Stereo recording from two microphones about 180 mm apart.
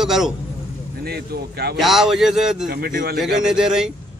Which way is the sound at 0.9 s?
60° right (ahead or behind).